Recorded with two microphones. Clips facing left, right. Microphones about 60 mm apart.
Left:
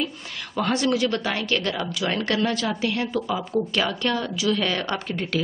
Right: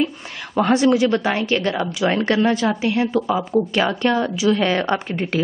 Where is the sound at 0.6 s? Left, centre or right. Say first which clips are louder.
Right 7 dB; centre.